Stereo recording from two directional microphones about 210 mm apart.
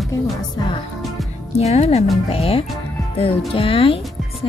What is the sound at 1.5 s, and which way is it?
A woman's voice, 30° left (ahead or behind).